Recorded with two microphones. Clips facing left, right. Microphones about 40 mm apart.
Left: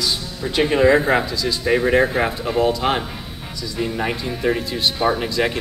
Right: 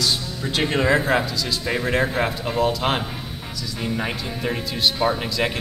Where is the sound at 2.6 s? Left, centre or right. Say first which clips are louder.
Left 3 dB; centre.